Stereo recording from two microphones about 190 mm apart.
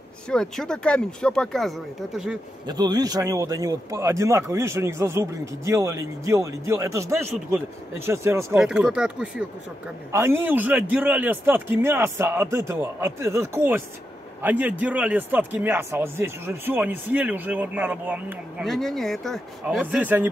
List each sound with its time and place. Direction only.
0.3 s speech: 5° left (ahead or behind)
2.6 s speech: 20° right (ahead or behind)
8.5 s speech: 5° right (ahead or behind)